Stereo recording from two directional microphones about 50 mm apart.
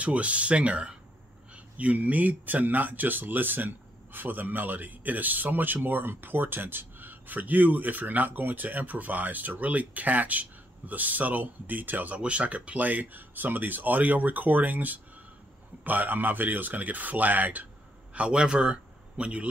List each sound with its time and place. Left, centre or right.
0.0 s speech: right
18.1 s speech: right